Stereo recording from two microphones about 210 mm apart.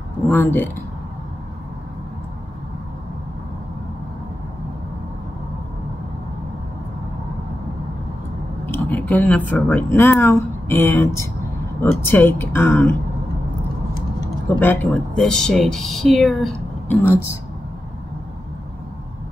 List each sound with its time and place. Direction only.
0.3 s speech: 10° left (ahead or behind)
8.6 s speech: 10° left (ahead or behind)
14.6 s speech: 10° left (ahead or behind)